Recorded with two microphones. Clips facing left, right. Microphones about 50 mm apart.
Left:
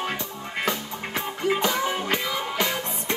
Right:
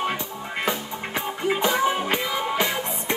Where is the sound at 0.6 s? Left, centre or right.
Right.